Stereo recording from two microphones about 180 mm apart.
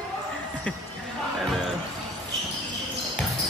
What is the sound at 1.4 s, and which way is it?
Basketball bounce, centre (ahead or behind).